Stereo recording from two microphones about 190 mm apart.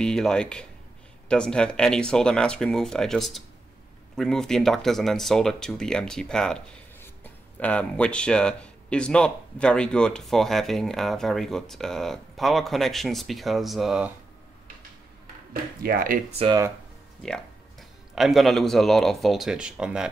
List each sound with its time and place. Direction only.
0.0 s speech: 5° left (ahead or behind)
15.8 s speech: 50° right (ahead or behind)
16.3 s speech: 30° right (ahead or behind)
17.2 s speech: centre (ahead or behind)